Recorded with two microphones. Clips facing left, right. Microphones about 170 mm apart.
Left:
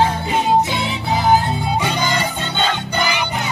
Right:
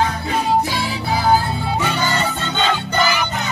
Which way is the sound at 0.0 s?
20° left (ahead or behind).